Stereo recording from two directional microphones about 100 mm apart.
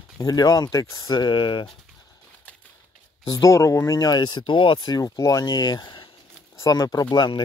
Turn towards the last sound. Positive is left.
turn(degrees=50)  # may be behind; listen again after turning